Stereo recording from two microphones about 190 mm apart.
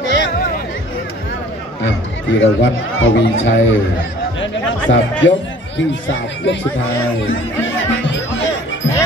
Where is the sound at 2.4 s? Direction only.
85° left.